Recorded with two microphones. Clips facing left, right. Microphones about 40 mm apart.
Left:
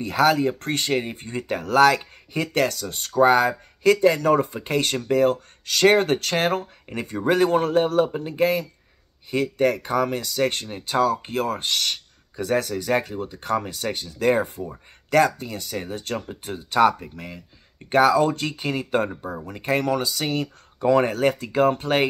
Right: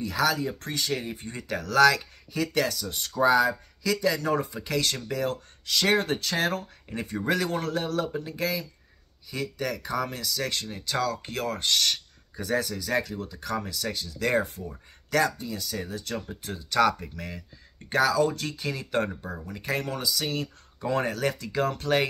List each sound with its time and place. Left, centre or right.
0.0 s speech: left
5.7 s speech: left
11.0 s speech: left
12.4 s speech: left
12.9 s speech: left
13.3 s speech: left
15.0 s speech: left
16.3 s speech: left
16.8 s speech: centre
17.8 s speech: left